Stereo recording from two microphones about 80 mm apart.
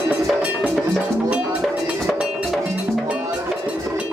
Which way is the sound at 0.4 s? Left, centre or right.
Centre.